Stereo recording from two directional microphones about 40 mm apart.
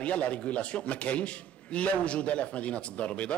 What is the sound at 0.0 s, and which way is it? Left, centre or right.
Speech, left.